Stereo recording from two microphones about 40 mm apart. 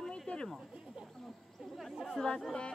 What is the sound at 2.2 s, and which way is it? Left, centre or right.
Speech, centre.